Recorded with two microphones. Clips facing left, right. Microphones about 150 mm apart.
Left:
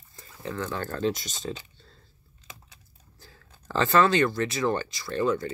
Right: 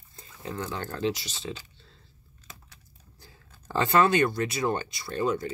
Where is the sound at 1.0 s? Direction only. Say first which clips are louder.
Left 1 dB; 40° left (ahead or behind).